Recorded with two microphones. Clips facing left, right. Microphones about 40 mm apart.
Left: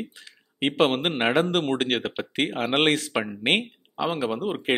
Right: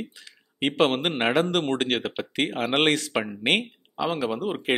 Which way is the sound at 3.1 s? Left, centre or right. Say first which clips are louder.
Even; centre.